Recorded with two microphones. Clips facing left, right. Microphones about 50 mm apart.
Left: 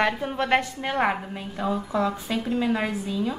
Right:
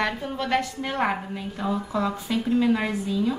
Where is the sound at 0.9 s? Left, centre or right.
Centre.